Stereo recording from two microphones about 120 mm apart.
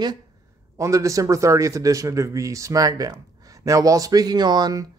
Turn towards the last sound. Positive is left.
turn(degrees=-30)  # may be behind; listen again after turning